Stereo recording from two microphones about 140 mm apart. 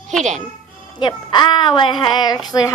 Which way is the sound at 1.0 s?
35° left (ahead or behind).